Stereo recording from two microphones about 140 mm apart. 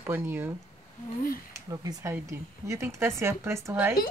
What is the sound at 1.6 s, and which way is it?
Speech, 25° right (ahead or behind).